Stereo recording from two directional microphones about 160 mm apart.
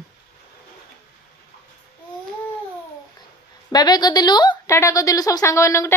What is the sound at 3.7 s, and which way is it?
A woman's voice, 25° left (ahead or behind).